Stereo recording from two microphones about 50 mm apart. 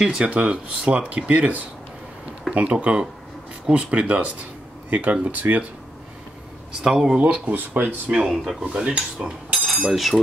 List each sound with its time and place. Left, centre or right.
0.0 s speech: centre; by 5.7 s right
6.8 s speech: centre
7.2 s speech: right
8.3 s speech: centre
8.7 s dishes: centre
9.8 s speech: centre